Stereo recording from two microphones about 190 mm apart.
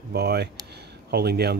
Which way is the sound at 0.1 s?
60° right (ahead or behind).